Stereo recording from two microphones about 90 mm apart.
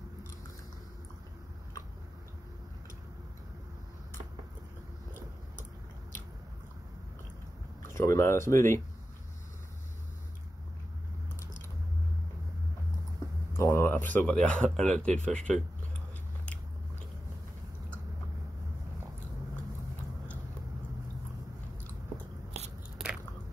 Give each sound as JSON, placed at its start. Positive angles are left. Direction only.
{"t": 7.8, "sound": "speech", "side_deg": 30}
{"t": 13.5, "sound": "a sound", "side_deg": 30}
{"t": 14.2, "sound": "speech", "side_deg": 15}